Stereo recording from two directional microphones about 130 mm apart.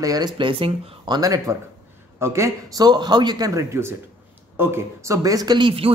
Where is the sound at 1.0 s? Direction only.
30° right (ahead or behind).